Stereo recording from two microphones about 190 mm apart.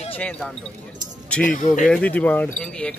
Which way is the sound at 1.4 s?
45° left (ahead or behind).